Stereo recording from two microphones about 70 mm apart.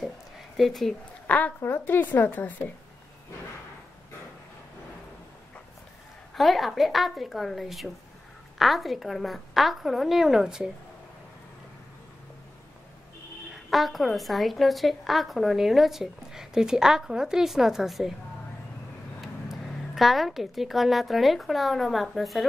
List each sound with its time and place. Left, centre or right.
0.6 s a woman's voice: centre
1.2 s a sound: left
1.6 s speech: left
6.3 s a woman's voice: centre
13.7 s a woman's voice: centre
19.2 s a woman's voice: centre